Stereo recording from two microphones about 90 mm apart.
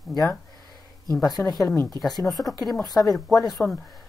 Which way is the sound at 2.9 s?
45° left (ahead or behind).